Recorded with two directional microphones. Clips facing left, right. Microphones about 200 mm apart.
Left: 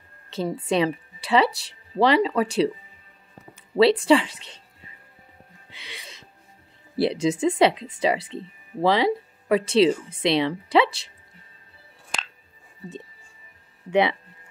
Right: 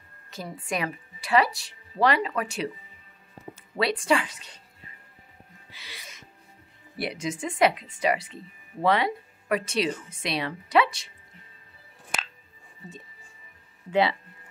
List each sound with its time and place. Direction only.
0.3 s a woman's voice: 30° left (ahead or behind)
3.7 s speech: 25° left (ahead or behind)
7.0 s speech: 30° left (ahead or behind)
12.1 s music: 5° right (ahead or behind)
13.8 s speech: 20° left (ahead or behind)